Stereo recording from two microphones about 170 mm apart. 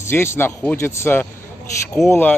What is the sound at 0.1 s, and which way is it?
Speech, 15° left (ahead or behind).